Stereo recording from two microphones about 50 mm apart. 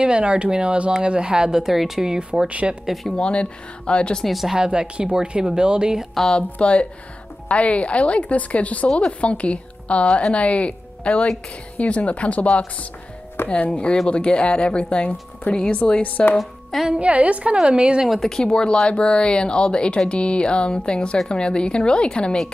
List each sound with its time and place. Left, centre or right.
0.0 s speech: right
2.1 s speech: right
2.9 s speech: centre
3.2 s speech: left
4.2 s speech: centre
4.6 s speech: centre
6.1 s speech: centre
6.6 s speech: left
13.5 s speech: left
17.0 s speech: right
18.2 s speech: centre